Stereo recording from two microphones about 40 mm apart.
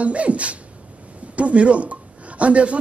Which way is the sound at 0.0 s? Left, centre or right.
Right.